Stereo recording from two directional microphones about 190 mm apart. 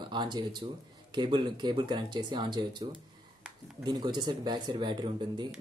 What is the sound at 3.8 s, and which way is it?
Speech, 20° right (ahead or behind).